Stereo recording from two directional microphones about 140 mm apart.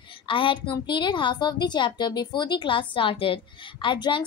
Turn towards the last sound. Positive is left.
turn(degrees=35)  # may be behind; listen again after turning